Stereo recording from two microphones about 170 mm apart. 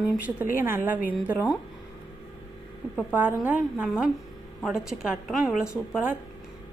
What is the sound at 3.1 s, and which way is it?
A woman's voice, 10° right (ahead or behind).